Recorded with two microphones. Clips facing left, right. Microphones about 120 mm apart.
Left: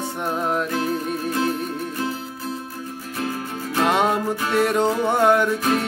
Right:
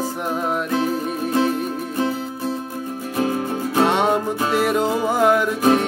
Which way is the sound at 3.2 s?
20° right (ahead or behind).